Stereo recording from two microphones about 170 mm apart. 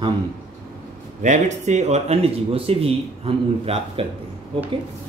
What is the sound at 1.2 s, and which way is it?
Speech, 45° right (ahead or behind).